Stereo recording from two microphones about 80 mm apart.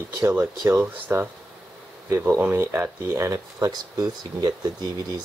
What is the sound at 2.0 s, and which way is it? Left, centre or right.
Speech, right.